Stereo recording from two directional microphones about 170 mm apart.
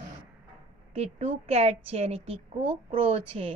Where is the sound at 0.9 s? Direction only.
35° right (ahead or behind).